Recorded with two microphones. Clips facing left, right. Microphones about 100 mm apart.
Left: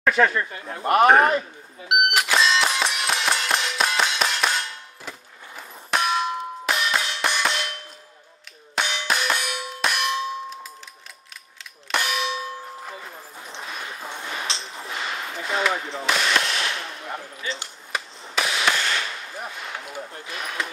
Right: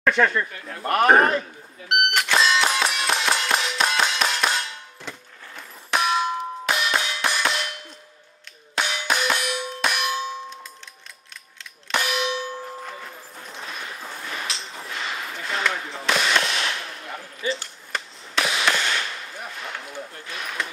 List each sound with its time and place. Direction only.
0.0 s speech: 5° left (ahead or behind)
0.5 s speech: 25° left (ahead or behind)
1.0 s a man's voice: centre (ahead or behind)
1.9 s clang: 5° left (ahead or behind)
8.7 s clang: centre (ahead or behind)
11.9 s clang: centre (ahead or behind)
13.6 s a sound: centre (ahead or behind)
17.9 s a sound: centre (ahead or behind)